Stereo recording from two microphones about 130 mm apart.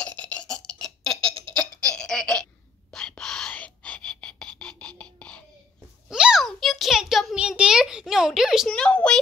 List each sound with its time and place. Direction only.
0.0 s burping: 10° left (ahead or behind)
1.5 s baby laughter: 5° left (ahead or behind)
2.9 s whispering: 5° left (ahead or behind)
6.0 s a sound: 5° right (ahead or behind)